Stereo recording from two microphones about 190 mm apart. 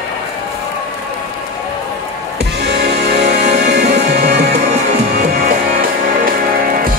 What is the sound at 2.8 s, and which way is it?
Music, 65° right (ahead or behind).